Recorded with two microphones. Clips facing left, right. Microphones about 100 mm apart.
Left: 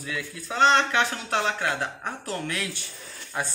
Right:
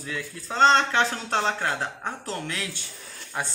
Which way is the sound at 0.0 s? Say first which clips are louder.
Even; 30° right (ahead or behind).